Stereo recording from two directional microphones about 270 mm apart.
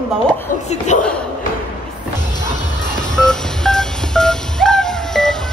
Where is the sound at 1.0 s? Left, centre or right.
Centre.